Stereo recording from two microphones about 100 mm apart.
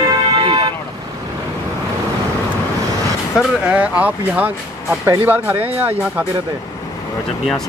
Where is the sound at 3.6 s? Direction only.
15° right (ahead or behind).